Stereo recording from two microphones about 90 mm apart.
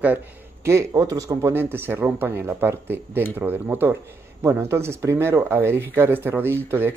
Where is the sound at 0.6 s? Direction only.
30° right (ahead or behind).